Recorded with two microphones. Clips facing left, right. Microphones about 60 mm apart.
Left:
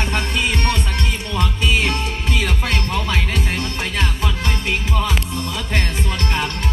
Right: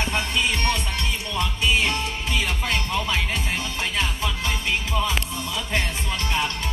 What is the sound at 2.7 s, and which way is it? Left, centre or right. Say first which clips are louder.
Speech: left 3 dB; left.